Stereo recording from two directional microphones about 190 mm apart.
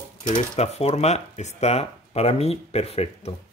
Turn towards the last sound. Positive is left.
turn(degrees=30)  # may be behind; listen again after turning